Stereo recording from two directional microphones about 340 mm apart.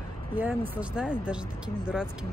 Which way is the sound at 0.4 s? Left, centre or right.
Centre.